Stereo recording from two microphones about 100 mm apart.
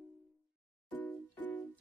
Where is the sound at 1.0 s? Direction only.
15° left (ahead or behind).